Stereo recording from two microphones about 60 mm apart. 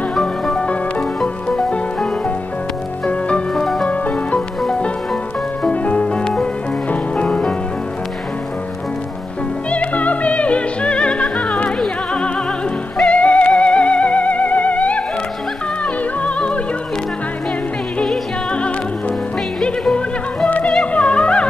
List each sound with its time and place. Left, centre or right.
0.1 s music: centre
3.1 s music: centre
3.5 s music: centre
4.6 s music: centre
9.7 s music: left
16.3 s music: centre
19.6 s music: centre
20.4 s music: left